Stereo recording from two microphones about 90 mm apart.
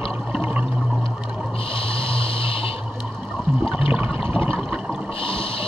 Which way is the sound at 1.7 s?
90° left.